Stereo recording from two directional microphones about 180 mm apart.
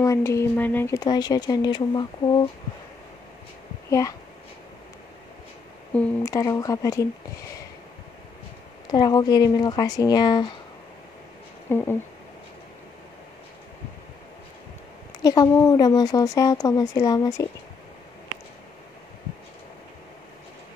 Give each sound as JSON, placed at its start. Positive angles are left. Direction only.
{"t": 0.0, "sound": "speech", "side_deg": 15}
{"t": 6.2, "sound": "speech", "side_deg": 20}
{"t": 8.9, "sound": "speech", "side_deg": 25}
{"t": 11.7, "sound": "speech", "side_deg": 10}
{"t": 15.1, "sound": "speech", "side_deg": 20}